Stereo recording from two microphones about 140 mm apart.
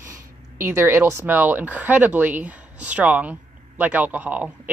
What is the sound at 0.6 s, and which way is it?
Speech, 20° right (ahead or behind).